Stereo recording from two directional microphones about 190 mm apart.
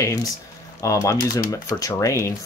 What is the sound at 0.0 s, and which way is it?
Speech, 20° left (ahead or behind).